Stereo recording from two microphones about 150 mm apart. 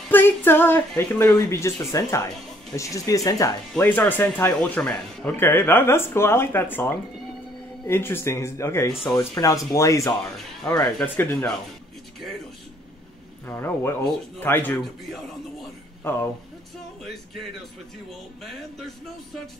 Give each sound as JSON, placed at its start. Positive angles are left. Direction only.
{"t": 0.1, "sound": "a woman's voice", "side_deg": 15}
{"t": 3.7, "sound": "a woman's voice", "side_deg": 10}
{"t": 11.0, "sound": "speech", "side_deg": 10}
{"t": 13.5, "sound": "speech", "side_deg": 15}
{"t": 16.0, "sound": "speech", "side_deg": 15}